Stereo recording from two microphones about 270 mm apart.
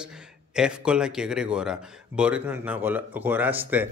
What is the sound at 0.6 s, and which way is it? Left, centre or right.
Speech, centre.